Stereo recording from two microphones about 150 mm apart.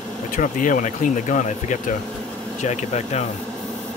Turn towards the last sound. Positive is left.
turn(degrees=50)  # may be behind; listen again after turning